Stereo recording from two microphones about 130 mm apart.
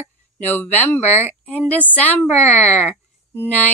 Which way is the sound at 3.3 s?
15° left (ahead or behind).